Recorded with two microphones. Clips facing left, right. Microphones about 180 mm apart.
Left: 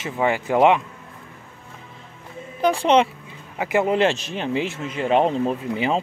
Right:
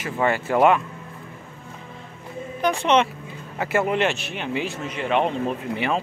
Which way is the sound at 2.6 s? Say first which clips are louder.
Left 2 dB; 30° left (ahead or behind).